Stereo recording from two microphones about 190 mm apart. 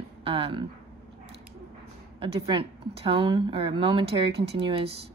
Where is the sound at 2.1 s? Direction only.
30° right (ahead or behind).